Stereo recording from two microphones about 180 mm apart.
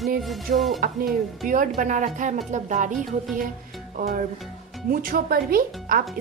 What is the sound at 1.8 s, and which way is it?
A woman's voice, 45° right (ahead or behind).